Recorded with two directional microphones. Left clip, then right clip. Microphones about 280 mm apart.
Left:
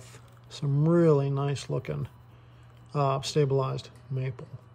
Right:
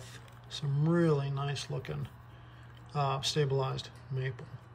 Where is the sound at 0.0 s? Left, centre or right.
Centre.